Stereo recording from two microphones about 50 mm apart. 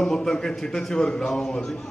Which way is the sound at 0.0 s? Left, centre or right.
Centre.